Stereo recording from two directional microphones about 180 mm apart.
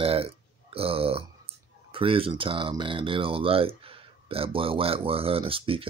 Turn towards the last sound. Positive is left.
turn(degrees=-30)  # may be behind; listen again after turning